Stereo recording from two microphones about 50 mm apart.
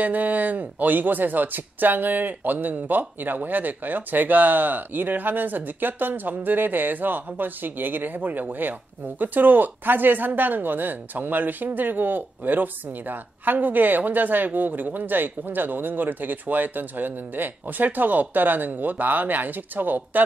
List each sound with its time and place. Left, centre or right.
0.0 s speech: right